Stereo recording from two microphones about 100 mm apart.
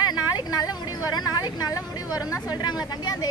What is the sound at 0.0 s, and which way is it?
A woman's voice, 45° left (ahead or behind).